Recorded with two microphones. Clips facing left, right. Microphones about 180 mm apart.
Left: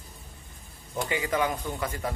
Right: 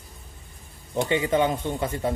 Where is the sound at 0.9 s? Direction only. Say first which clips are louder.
Right 6 dB; 25° right (ahead or behind).